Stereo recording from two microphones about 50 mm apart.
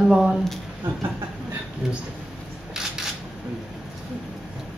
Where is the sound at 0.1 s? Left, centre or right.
Centre.